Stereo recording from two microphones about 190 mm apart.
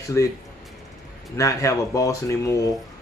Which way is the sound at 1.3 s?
15° left (ahead or behind).